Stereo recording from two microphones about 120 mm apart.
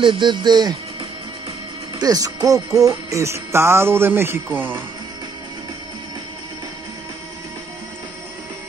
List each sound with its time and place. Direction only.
0.0 s speech: 40° right (ahead or behind)
2.0 s music: 30° right (ahead or behind); by 4.8 s 15° right (ahead or behind)